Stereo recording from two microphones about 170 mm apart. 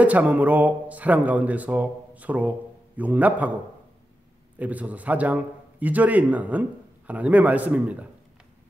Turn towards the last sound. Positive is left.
turn(degrees=-10)  # may be behind; listen again after turning